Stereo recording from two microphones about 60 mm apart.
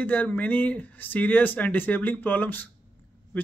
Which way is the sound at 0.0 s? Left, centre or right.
Left.